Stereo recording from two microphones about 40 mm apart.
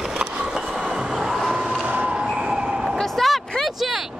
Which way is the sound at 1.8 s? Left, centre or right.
Right.